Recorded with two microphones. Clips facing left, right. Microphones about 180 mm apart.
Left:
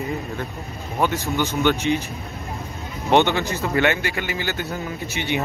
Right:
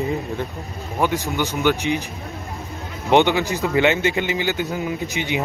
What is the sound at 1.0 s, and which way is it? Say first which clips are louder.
Speech: right 1 dB; 15° right (ahead or behind).